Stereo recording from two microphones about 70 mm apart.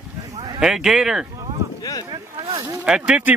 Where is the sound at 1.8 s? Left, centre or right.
Left.